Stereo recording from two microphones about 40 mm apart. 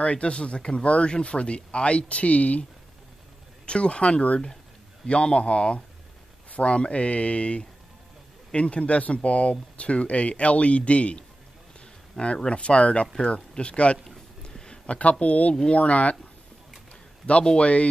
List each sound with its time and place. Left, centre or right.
0.0 s speech: left
3.6 s speech: left
14.5 s a sound: centre
14.9 s speech: left
17.3 s speech: left